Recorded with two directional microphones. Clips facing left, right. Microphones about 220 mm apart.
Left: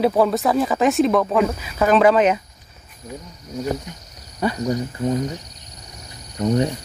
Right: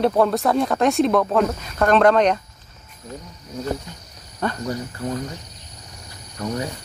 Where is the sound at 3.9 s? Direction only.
15° left (ahead or behind).